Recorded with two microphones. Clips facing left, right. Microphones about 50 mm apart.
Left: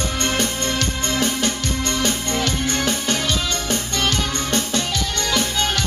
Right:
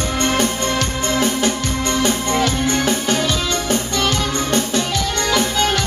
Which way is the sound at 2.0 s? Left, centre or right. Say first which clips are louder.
Right 6 dB; centre.